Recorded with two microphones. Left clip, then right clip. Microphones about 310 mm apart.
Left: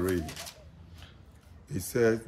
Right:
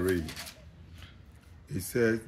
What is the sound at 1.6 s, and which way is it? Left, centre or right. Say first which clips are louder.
Speech: left 2 dB; centre.